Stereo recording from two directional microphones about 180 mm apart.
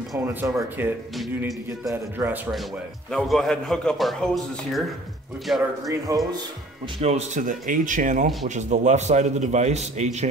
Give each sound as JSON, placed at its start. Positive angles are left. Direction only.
{"t": 0.2, "sound": "speech", "side_deg": -10}
{"t": 2.1, "sound": "speech", "side_deg": -10}
{"t": 3.1, "sound": "a man's voice", "side_deg": 0}
{"t": 5.5, "sound": "a man's voice", "side_deg": 0}
{"t": 5.9, "sound": "speech", "side_deg": -20}
{"t": 7.0, "sound": "a man's voice", "side_deg": -35}